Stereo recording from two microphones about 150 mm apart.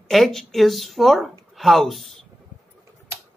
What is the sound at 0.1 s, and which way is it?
Speech, centre (ahead or behind).